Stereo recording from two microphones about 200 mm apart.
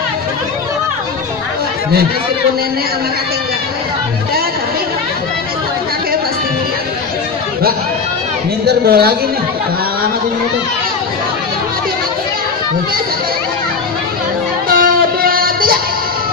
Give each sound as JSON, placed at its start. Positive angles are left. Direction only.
{"t": 8.6, "sound": "a woman's voice", "side_deg": -50}
{"t": 14.7, "sound": "music", "side_deg": -45}